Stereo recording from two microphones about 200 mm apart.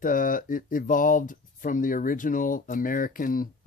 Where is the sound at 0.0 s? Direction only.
40° left (ahead or behind).